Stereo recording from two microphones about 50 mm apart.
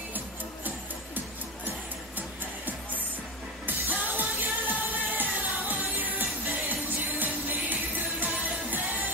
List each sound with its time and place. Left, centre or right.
2.1 s music: right